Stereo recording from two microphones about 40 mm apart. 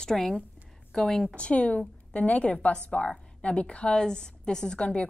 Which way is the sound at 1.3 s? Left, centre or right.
Left.